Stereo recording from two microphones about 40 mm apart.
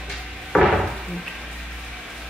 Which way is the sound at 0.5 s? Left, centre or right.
Left.